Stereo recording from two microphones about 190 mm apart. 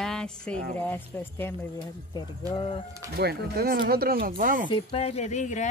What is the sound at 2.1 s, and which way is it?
Music, 30° left (ahead or behind).